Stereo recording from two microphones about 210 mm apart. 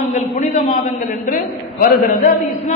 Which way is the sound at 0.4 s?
35° left (ahead or behind).